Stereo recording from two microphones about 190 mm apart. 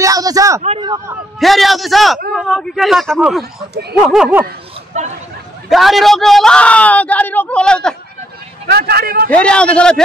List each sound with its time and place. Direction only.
0.0 s a sound: 20° right (ahead or behind)
0.6 s speech: 30° right (ahead or behind)
1.4 s speech: centre (ahead or behind)
4.9 s speech: 35° right (ahead or behind)
5.7 s speech: centre (ahead or behind)
8.6 s speech: 55° right (ahead or behind)
9.3 s speech: 5° left (ahead or behind)